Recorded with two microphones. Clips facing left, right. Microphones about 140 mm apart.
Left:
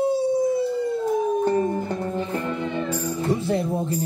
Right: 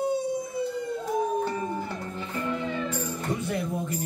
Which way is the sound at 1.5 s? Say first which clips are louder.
Left 8 dB; 45° left (ahead or behind).